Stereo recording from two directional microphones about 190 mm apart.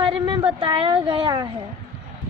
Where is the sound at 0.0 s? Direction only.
25° right (ahead or behind).